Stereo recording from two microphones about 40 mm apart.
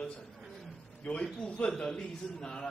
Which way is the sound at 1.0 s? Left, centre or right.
Left.